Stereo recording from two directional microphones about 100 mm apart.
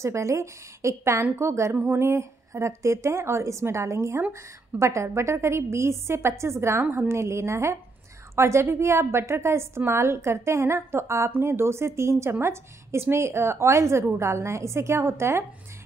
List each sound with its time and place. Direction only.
0.0 s a woman's voice: 30° right (ahead or behind)